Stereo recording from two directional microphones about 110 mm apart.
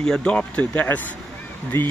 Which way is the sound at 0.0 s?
10° left (ahead or behind).